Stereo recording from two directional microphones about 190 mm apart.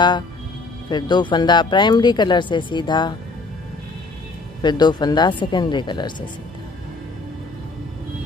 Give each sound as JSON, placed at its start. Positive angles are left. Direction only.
{"t": 0.8, "sound": "speech", "side_deg": 25}
{"t": 4.6, "sound": "speech", "side_deg": 25}